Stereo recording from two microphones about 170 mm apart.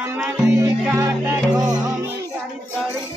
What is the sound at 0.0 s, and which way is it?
Music, 15° right (ahead or behind).